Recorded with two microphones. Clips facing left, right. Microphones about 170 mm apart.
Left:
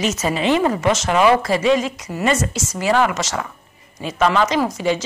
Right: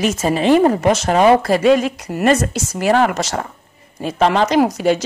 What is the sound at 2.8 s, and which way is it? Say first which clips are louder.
Speech: right 3 dB; 50° right (ahead or behind).